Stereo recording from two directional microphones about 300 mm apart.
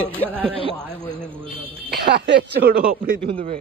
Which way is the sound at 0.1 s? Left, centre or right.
Centre.